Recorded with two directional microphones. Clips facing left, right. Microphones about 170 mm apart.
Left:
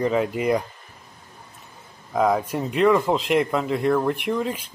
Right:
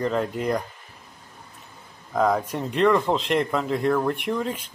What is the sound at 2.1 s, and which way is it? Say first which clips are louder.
Speech: left 1 dB; 5° left (ahead or behind).